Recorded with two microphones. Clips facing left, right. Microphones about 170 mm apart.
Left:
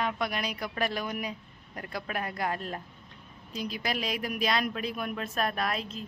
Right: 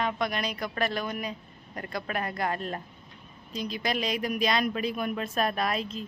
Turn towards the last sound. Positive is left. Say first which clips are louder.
# right 3 dB
turn(degrees=0)  # may be behind; listen again after turning